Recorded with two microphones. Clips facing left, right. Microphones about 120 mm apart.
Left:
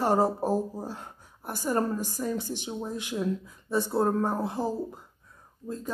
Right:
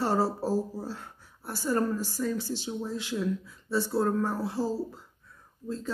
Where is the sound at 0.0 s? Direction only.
15° left (ahead or behind).